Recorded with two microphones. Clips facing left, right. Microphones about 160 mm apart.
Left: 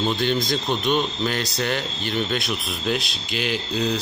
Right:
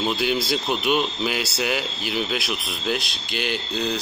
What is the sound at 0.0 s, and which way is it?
Speech, 5° right (ahead or behind).